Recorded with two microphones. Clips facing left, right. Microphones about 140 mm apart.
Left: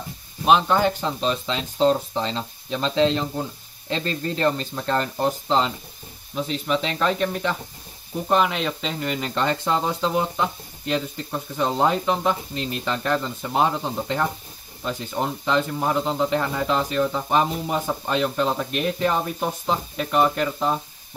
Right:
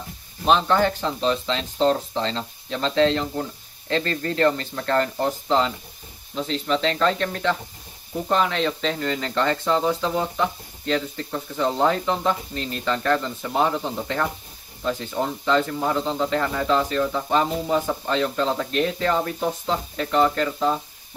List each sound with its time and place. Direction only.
0.5 s speech: 10° left (ahead or behind)